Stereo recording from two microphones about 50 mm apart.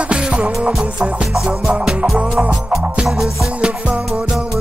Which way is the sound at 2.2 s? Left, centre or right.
Centre.